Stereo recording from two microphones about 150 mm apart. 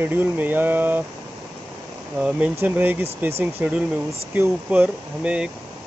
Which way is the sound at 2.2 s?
10° right (ahead or behind).